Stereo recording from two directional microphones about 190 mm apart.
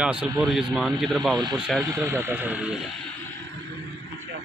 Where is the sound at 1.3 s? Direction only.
20° right (ahead or behind).